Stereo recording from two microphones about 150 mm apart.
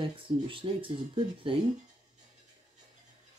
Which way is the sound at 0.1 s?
35° right (ahead or behind).